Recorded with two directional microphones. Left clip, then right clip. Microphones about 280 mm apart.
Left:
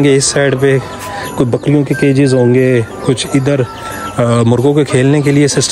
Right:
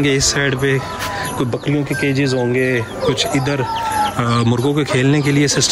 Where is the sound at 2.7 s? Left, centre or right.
Centre.